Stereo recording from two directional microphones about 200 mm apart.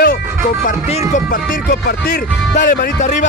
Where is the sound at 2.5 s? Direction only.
40° left (ahead or behind).